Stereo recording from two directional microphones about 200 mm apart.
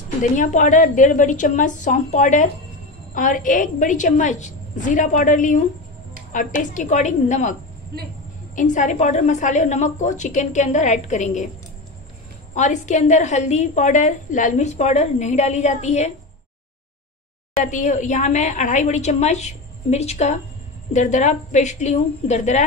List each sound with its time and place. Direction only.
0.2 s a woman's voice: 40° left (ahead or behind)
6.6 s a woman's voice: 40° left (ahead or behind)
8.5 s a woman's voice: 35° left (ahead or behind)
12.5 s a woman's voice: 35° left (ahead or behind)
17.6 s a woman's voice: 40° left (ahead or behind)